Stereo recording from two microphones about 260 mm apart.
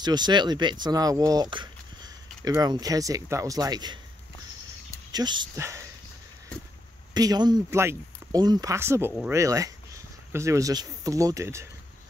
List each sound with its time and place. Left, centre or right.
0.0 s speech: centre
5.1 s speech: centre
7.2 s speech: centre